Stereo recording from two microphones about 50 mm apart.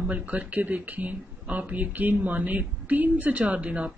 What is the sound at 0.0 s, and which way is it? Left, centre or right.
Speech, right.